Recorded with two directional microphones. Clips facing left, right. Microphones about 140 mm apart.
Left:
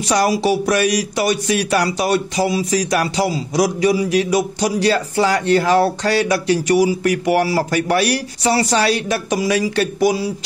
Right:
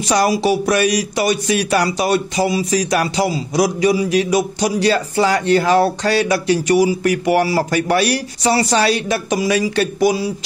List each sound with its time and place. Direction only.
0.1 s a man's voice: 20° right (ahead or behind)